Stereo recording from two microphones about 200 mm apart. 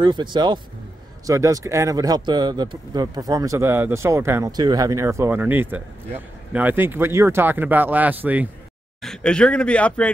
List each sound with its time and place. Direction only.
0.0 s speech: 25° right (ahead or behind)
9.0 s speech: 5° left (ahead or behind)